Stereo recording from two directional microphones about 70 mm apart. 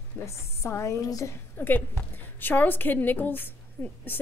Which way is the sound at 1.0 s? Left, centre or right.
Left.